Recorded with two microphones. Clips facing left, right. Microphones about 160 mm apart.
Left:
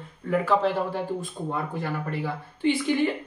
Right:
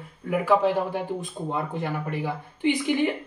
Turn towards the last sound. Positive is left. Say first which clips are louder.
# even
turn(degrees=-15)  # may be behind; listen again after turning